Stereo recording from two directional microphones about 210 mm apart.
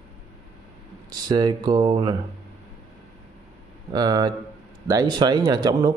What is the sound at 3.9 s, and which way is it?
Speech, 20° right (ahead or behind).